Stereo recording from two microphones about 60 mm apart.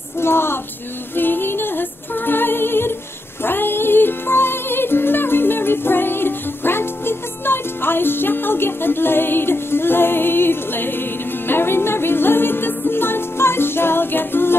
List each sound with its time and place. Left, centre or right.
0.2 s female singing: left
1.1 s music: left